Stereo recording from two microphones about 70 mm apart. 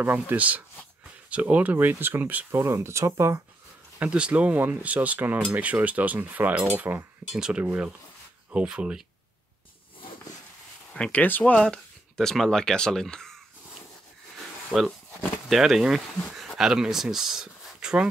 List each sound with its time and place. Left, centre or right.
0.0 s speech: right
2.5 s speech: right
4.0 s speech: centre
7.3 s speech: centre
11.0 s speech: left
11.5 s speech: centre
14.7 s speech: left
15.4 s speech: centre